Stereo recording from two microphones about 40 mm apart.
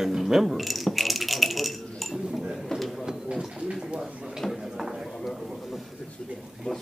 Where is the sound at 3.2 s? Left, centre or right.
Right.